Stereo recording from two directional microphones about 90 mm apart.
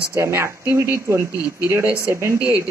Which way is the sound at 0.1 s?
30° right (ahead or behind).